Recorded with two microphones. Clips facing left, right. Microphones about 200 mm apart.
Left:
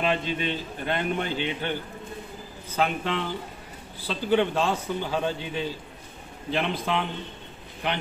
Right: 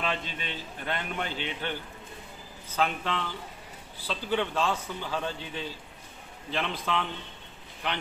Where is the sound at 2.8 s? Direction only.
15° left (ahead or behind).